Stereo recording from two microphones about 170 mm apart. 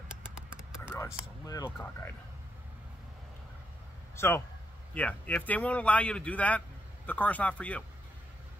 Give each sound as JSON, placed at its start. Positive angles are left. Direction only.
{"t": 0.5, "sound": "a sound", "side_deg": -5}
{"t": 0.9, "sound": "speech", "side_deg": 20}
{"t": 4.9, "sound": "speech", "side_deg": 10}